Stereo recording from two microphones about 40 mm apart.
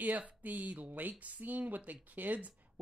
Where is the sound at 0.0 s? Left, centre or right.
Right.